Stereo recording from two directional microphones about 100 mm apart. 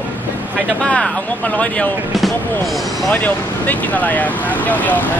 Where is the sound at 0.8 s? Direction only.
10° left (ahead or behind).